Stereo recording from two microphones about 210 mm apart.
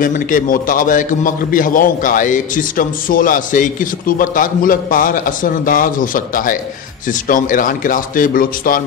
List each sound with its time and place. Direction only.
0.0 s a man's voice: 40° left (ahead or behind)